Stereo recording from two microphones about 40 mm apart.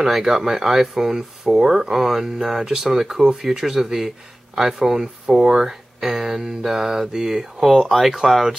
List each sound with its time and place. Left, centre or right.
0.2 s speech: centre
7.7 s speech: centre